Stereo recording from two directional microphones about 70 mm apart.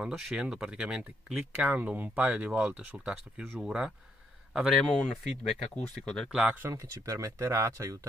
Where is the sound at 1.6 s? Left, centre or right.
Right.